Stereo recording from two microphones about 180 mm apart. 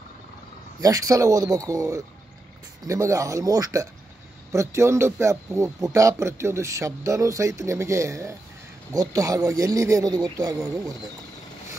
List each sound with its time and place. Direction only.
0.7 s a man's voice: 20° right (ahead or behind)